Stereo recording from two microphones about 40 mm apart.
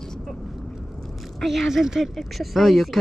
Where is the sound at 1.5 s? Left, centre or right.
Centre.